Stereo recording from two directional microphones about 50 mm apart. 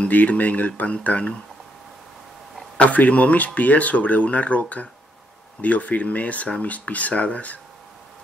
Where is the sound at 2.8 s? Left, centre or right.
Left.